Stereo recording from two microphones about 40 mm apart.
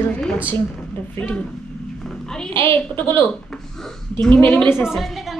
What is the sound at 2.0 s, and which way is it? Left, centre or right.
Speech, centre.